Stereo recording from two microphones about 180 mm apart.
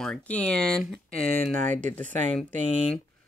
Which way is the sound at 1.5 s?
45° right (ahead or behind).